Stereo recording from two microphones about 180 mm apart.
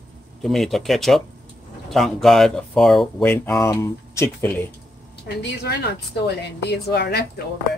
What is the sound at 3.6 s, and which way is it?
Speech, 15° left (ahead or behind).